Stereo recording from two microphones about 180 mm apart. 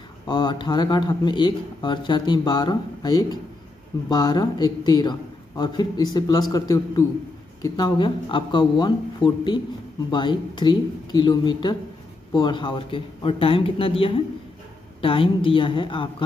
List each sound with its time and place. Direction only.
0.3 s speech: 25° left (ahead or behind)